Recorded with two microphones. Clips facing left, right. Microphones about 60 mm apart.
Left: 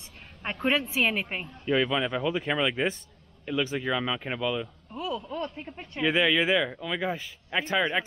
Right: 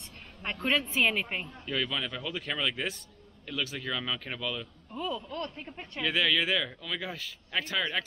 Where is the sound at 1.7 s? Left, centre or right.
Left.